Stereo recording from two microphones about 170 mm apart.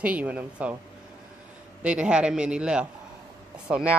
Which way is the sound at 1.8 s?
5° right (ahead or behind).